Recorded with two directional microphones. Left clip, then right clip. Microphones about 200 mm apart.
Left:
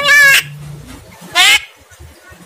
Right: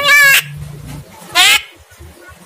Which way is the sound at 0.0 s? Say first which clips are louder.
Left 1 dB; 5° right (ahead or behind).